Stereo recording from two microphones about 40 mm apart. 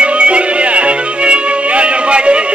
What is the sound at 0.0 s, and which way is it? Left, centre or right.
Music, right.